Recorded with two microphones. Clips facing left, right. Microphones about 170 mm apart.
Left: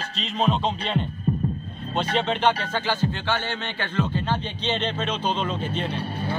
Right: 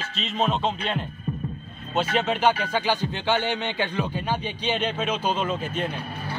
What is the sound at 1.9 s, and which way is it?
Speech, 5° right (ahead or behind).